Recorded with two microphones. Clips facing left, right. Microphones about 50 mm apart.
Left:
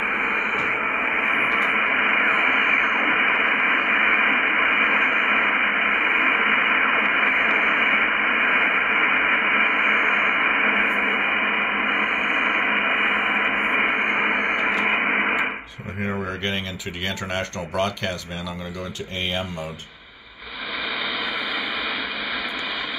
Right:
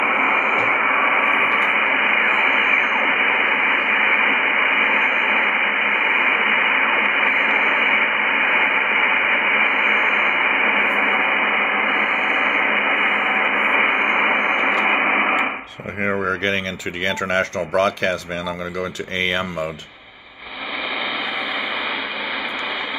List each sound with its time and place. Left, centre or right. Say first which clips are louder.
0.0 s radio: right 5 dB; right
0.6 s radio: right 5 dB; centre
0.8 s radio: right 5 dB; right
1.3 s radio: right 3 dB; right
2.3 s radio: right 2 dB; right
3.1 s radio: right 2 dB; centre
5.0 s radio: right 2 dB; right
5.3 s radio: right 2 dB; centre
16.0 s a sound: right 6 dB; right
17.3 s speech: right 7 dB; right
19.1 s speech: right 6 dB; right